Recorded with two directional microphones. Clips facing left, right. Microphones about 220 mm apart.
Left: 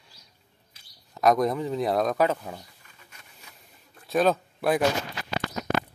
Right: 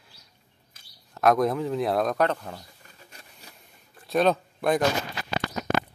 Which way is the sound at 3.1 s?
35° right (ahead or behind).